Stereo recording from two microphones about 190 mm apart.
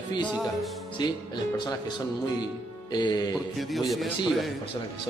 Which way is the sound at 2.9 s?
20° left (ahead or behind).